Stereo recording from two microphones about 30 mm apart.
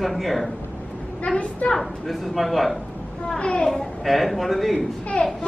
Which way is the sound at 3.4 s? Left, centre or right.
Left.